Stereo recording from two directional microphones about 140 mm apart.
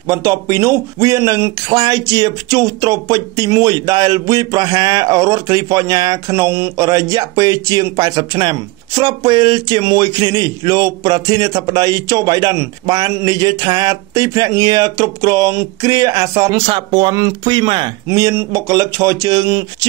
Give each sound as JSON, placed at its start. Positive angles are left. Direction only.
{"t": 0.1, "sound": "speech", "side_deg": -20}
{"t": 18.0, "sound": "speech", "side_deg": -20}